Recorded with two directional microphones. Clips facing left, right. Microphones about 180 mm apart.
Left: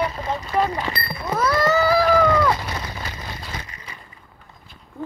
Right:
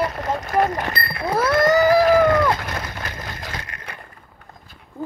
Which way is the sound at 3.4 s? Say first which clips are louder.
Right 2 dB; 60° right (ahead or behind).